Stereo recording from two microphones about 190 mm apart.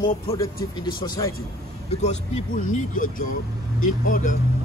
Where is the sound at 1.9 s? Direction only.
35° left (ahead or behind).